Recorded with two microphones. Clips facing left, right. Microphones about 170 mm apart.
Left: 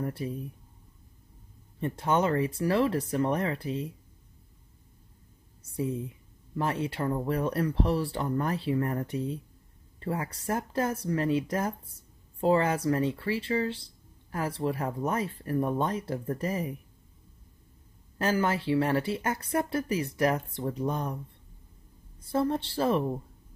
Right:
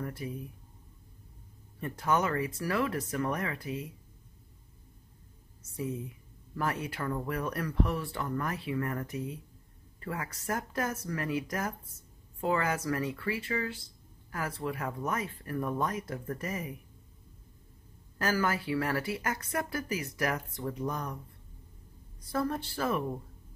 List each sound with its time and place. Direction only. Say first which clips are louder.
0.0 s speech: left 5 dB; 30° left (ahead or behind)
1.8 s speech: left 3 dB; 25° left (ahead or behind)
5.6 s speech: left 4 dB; 30° left (ahead or behind)
18.1 s speech: left 3 dB; 25° left (ahead or behind)
22.2 s speech: left 4 dB; 25° left (ahead or behind)